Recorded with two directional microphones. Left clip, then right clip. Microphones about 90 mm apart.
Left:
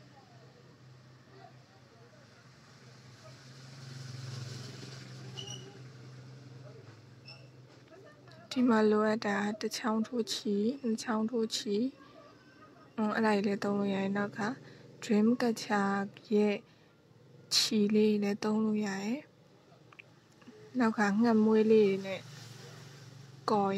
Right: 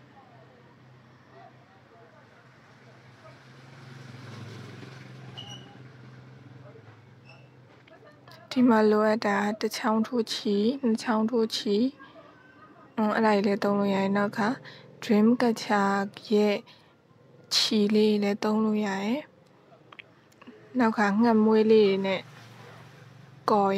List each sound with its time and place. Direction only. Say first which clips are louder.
3.3 s vehicle: right 3 dB; 30° right (ahead or behind)
8.3 s a woman's voice: right 7 dB; 30° right (ahead or behind)
20.7 s speech: right 6 dB; 25° right (ahead or behind)